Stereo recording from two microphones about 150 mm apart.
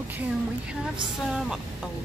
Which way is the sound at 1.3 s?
Centre (ahead or behind).